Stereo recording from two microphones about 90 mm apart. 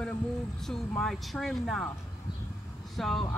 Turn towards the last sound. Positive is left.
turn(degrees=5)  # may be behind; listen again after turning